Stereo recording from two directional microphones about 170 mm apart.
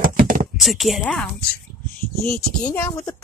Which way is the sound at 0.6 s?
Centre (ahead or behind).